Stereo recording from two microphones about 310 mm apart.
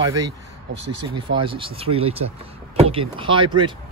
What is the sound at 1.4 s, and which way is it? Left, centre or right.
Speech, centre.